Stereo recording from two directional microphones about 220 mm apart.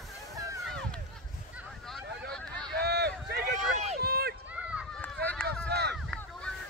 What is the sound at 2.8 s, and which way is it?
Run, 50° right (ahead or behind).